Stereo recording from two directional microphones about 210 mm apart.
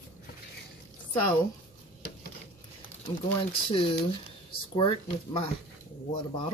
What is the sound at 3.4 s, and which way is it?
Speech, 25° left (ahead or behind).